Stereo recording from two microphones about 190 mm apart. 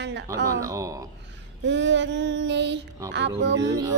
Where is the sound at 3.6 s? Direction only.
15° right (ahead or behind).